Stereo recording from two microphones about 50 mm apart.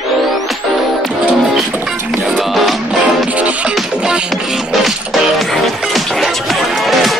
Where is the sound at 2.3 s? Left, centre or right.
Centre.